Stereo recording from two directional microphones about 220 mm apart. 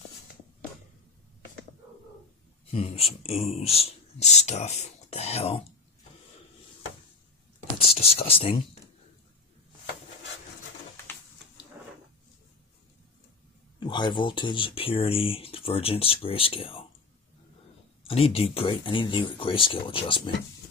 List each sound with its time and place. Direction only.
2.7 s speech: 25° left (ahead or behind)
7.8 s speech: 25° left (ahead or behind)
13.7 s speech: 20° left (ahead or behind)
18.0 s speech: 25° left (ahead or behind)